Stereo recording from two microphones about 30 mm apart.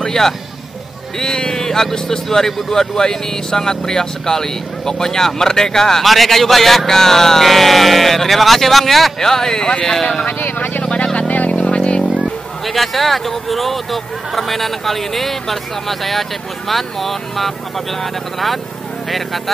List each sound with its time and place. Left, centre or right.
0.0 s speech: centre
6.0 s speech: centre
9.2 s speech: centre
10.2 s vehicle: left
10.8 s vehicle: left
11.1 s vehicle: left
11.5 s vehicle: left
12.6 s speech: centre